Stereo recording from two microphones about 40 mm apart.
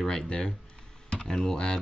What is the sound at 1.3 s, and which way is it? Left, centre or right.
Speech, centre.